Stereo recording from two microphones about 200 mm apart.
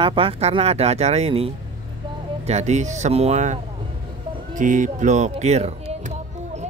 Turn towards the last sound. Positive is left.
turn(degrees=-35)  # may be behind; listen again after turning